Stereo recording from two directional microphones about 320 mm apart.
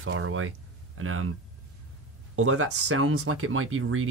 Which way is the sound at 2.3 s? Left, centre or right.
Right.